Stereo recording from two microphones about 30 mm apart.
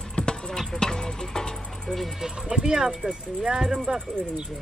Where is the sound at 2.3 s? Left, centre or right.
Right.